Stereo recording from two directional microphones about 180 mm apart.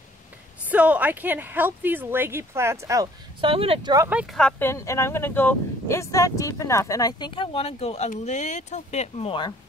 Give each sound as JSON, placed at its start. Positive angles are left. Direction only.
{"t": 0.7, "sound": "a woman's voice", "side_deg": -10}
{"t": 4.1, "sound": "a woman's voice", "side_deg": -5}
{"t": 4.4, "sound": "speech", "side_deg": 10}